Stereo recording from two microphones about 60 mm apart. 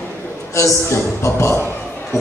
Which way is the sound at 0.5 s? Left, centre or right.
Left.